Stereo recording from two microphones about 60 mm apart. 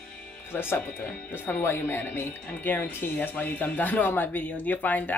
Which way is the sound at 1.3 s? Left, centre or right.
Left.